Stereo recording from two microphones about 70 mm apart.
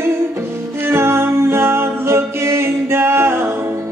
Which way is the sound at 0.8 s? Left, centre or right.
Right.